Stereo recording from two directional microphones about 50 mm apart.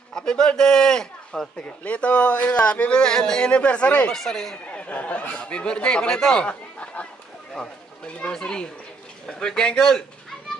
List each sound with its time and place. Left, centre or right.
0.1 s a man's voice: centre
1.6 s speech: left
4.1 s speech: centre
4.7 s speech: left
8.2 s speech: centre